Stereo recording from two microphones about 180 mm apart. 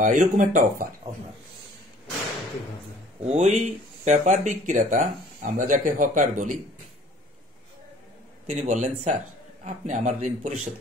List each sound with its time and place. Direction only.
0.0 s speech: 45° right (ahead or behind)
3.3 s speech: 40° right (ahead or behind)
8.5 s a man's voice: 45° right (ahead or behind)